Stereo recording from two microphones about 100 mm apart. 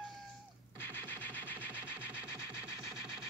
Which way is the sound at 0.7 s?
20° left (ahead or behind).